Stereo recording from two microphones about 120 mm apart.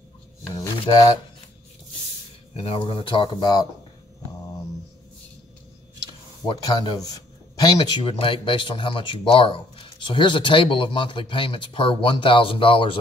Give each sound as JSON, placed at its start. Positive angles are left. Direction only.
{"t": 2.5, "sound": "speech", "side_deg": 55}
{"t": 6.4, "sound": "speech", "side_deg": 35}